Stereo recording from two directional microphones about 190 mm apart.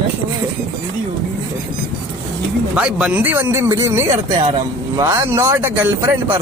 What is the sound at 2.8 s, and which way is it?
Speech, 5° right (ahead or behind).